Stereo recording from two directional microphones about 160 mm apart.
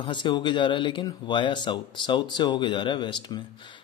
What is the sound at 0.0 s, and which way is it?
Speech, 30° left (ahead or behind).